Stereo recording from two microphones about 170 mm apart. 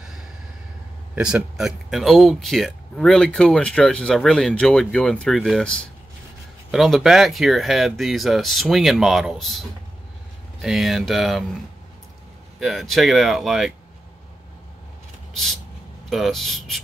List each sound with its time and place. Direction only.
1.1 s speech: 5° right (ahead or behind)
12.5 s speech: centre (ahead or behind)
16.1 s speech: centre (ahead or behind)